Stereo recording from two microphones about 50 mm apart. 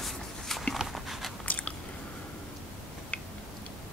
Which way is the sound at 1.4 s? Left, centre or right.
Left.